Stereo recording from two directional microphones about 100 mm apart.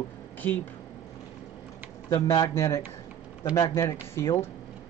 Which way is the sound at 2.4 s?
30° left (ahead or behind).